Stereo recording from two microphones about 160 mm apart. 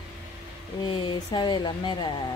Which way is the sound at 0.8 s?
30° left (ahead or behind).